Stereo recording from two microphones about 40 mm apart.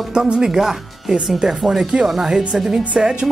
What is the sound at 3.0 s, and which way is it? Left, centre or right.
Speech, right.